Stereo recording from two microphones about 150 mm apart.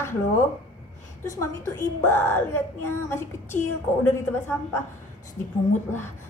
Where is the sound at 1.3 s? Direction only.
20° left (ahead or behind).